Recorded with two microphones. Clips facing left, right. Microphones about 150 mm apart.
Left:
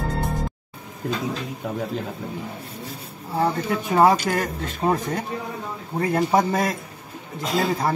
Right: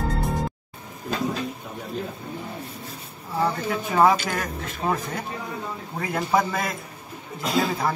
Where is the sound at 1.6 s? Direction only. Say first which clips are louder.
Left 9 dB; 90° left.